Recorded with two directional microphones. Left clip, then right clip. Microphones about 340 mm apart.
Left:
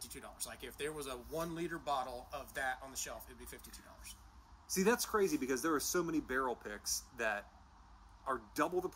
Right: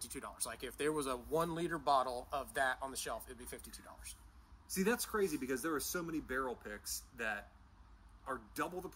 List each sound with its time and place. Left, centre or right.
0.0 s speech: centre
4.6 s speech: centre